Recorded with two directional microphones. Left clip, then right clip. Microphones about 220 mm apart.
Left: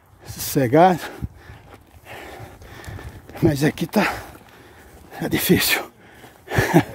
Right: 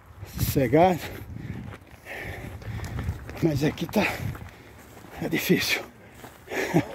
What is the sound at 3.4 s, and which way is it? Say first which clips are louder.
Speech: left 6 dB; 40° left (ahead or behind).